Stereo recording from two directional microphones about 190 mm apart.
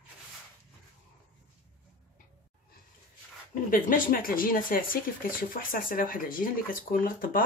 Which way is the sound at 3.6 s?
45° left (ahead or behind).